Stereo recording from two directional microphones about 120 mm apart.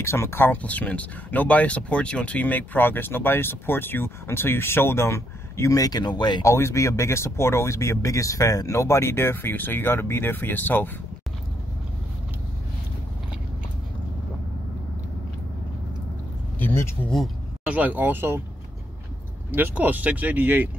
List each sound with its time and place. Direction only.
0.0 s speech: 20° left (ahead or behind); by 6.4 s 40° left (ahead or behind)
6.4 s speech: 25° left (ahead or behind)
16.5 s speech: 20° left (ahead or behind)
17.6 s speech: 15° right (ahead or behind)
19.5 s speech: 15° right (ahead or behind)